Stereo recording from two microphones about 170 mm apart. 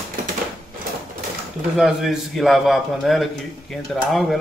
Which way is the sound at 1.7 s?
Centre (ahead or behind).